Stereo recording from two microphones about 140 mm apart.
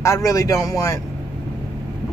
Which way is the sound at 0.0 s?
20° left (ahead or behind).